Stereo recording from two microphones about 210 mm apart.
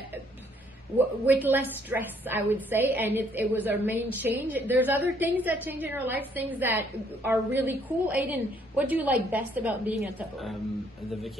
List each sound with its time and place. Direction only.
0.9 s a woman's voice: 10° right (ahead or behind)